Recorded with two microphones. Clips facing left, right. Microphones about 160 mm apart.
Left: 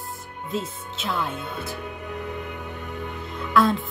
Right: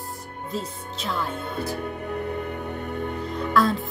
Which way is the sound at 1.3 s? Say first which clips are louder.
Right 3 dB; 55° right (ahead or behind).